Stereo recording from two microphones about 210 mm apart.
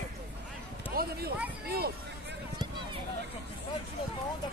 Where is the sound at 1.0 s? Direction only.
45° right (ahead or behind).